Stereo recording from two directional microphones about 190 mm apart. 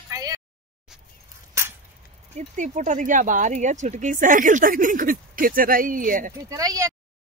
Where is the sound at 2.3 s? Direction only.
40° right (ahead or behind).